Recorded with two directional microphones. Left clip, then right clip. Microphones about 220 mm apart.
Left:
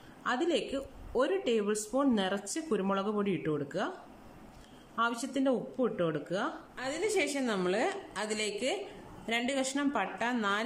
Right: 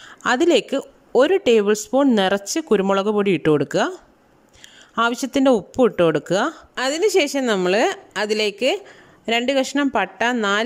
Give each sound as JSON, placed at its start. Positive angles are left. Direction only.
{"t": 0.2, "sound": "speech", "side_deg": -45}
{"t": 4.9, "sound": "speech", "side_deg": -45}